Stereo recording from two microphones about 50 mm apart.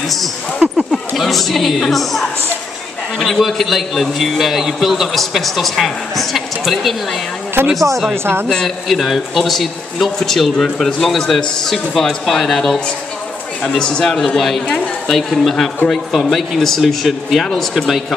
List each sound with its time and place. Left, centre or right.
0.6 s speech: right
1.1 s a man's voice: centre
7.6 s speech: right
8.6 s a man's voice: centre